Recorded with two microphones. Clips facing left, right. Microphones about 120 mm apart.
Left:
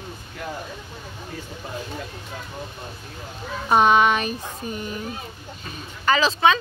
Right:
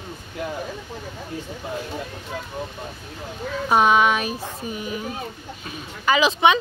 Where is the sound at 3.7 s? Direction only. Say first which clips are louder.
Left 1 dB; 5° right (ahead or behind).